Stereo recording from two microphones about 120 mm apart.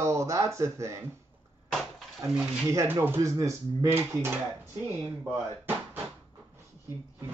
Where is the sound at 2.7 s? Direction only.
20° right (ahead or behind).